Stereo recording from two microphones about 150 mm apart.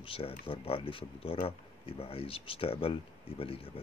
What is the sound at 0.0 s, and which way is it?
Speech, 35° left (ahead or behind).